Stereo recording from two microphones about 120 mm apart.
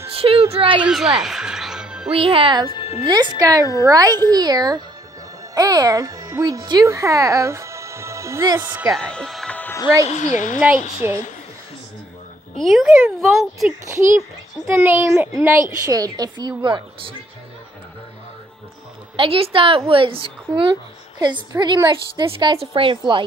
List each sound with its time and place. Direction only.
0.1 s a sound: 55° right (ahead or behind)
0.8 s speech: 5° right (ahead or behind)
2.1 s a woman's voice: 50° right (ahead or behind)
2.7 s music: 50° left (ahead or behind)
3.1 s a woman's voice: 35° right (ahead or behind); by 8.8 s 15° right (ahead or behind)
8.9 s music: 5° left (ahead or behind)
10.0 s a woman's voice: 85° left
12.5 s speech: centre (ahead or behind)
13.8 s a child's voice: 25° right (ahead or behind)
15.9 s a woman's voice: 30° right (ahead or behind)
19.1 s a woman's voice: 50° right (ahead or behind)